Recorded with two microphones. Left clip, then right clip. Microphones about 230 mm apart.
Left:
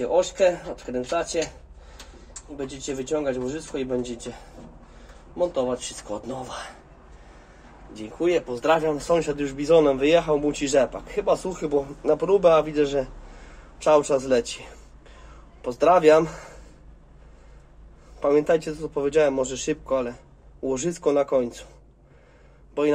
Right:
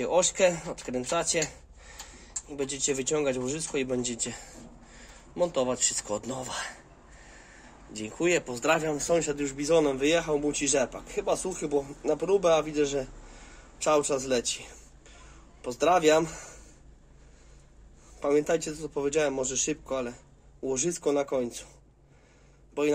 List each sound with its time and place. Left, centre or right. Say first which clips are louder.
0.0 s speech: left 4 dB; right
2.5 s speech: right 1 dB; right
5.3 s speech: left 3 dB; right
7.9 s a man's voice: left 3 dB; right
18.2 s a man's voice: left 6 dB; right